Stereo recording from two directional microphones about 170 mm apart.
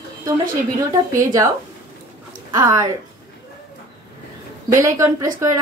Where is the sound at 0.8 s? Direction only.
15° right (ahead or behind).